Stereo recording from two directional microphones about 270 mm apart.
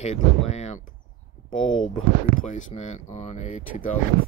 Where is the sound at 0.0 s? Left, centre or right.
Left.